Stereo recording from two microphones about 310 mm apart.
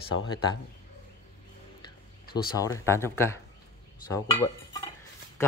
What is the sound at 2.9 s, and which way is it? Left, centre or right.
Speech, centre.